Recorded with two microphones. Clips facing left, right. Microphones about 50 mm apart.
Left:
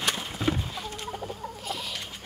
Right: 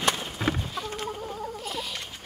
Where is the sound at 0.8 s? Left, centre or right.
Centre.